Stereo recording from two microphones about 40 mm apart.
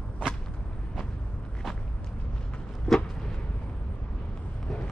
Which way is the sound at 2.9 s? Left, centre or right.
Centre.